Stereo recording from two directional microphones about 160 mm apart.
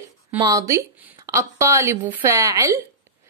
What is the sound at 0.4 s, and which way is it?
A woman's voice, 20° right (ahead or behind).